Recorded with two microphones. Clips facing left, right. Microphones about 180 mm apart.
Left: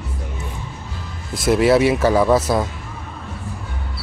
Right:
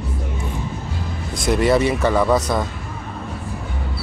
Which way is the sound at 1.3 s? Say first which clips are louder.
Left 2 dB; 5° left (ahead or behind).